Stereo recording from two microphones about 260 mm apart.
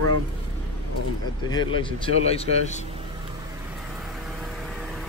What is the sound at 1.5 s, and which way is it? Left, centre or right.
A man's voice, centre.